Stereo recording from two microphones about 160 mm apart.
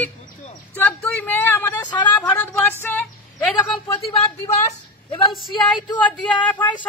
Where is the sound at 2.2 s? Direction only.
10° left (ahead or behind).